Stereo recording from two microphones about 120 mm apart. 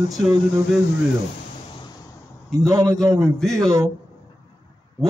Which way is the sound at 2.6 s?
30° right (ahead or behind).